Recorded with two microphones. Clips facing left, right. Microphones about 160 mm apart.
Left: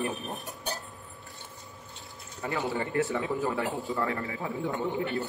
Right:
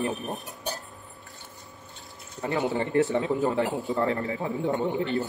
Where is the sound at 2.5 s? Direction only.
20° right (ahead or behind).